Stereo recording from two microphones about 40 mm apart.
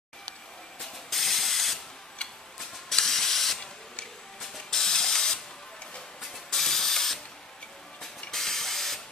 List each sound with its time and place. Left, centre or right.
0.7 s ratchet: centre
2.9 s ratchet: centre
6.3 s spray: centre
8.0 s printer: centre